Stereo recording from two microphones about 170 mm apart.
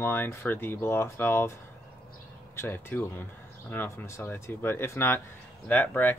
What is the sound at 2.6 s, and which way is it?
Speech, 15° left (ahead or behind).